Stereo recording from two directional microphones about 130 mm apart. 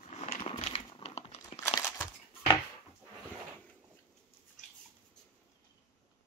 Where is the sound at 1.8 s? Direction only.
20° left (ahead or behind).